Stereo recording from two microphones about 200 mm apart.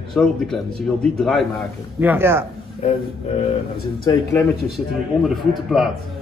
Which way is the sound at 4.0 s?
15° left (ahead or behind).